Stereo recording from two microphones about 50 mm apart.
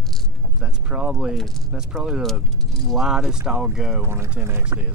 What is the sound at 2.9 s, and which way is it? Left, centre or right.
Speech, centre.